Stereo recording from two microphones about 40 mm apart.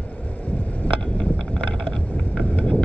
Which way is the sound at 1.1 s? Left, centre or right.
Centre.